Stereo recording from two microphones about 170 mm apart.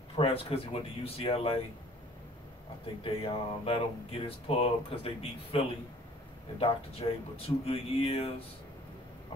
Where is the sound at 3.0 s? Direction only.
35° left (ahead or behind).